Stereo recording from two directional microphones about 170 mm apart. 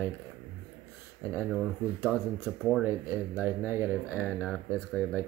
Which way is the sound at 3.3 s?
10° right (ahead or behind).